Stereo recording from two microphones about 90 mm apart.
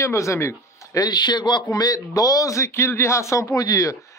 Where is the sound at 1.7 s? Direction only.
45° left (ahead or behind).